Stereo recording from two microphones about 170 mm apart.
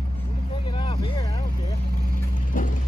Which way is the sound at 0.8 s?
30° left (ahead or behind).